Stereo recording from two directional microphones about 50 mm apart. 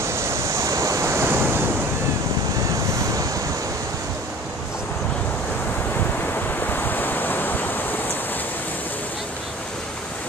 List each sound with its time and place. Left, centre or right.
0.0 s waves: right
6.7 s waves: left